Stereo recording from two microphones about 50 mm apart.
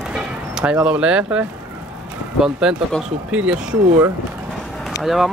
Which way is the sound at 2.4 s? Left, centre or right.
Centre.